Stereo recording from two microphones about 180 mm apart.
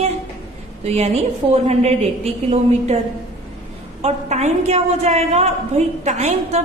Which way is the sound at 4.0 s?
40° right (ahead or behind).